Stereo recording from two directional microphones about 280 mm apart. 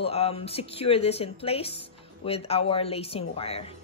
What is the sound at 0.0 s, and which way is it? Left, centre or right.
Speech, left.